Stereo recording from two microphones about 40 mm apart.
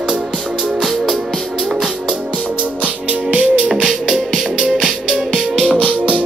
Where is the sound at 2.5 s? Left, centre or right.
Right.